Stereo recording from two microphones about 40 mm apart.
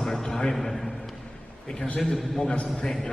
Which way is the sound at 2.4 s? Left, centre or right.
Left.